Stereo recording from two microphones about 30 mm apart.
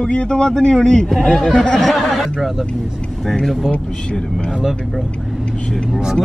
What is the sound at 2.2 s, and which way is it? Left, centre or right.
Speech, centre.